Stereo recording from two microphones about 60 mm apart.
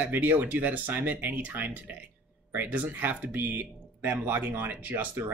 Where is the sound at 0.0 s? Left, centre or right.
Right.